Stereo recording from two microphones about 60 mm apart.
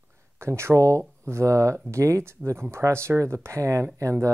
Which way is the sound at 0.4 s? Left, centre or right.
Right.